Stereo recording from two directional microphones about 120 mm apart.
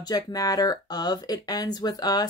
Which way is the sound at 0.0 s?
35° left (ahead or behind).